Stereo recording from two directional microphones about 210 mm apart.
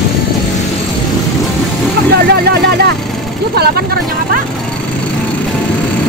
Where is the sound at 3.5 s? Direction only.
50° right (ahead or behind).